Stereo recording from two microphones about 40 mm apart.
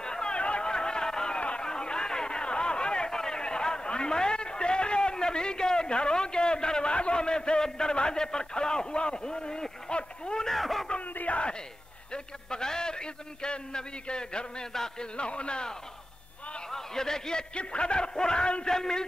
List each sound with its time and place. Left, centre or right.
0.0 s a sound: centre
10.5 s speech: centre
11.1 s speech: left
12.1 s a man's voice: centre
15.1 s a man's voice: left
16.7 s a man's voice: centre